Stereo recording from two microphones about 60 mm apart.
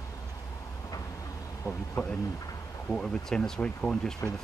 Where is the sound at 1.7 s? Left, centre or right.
Left.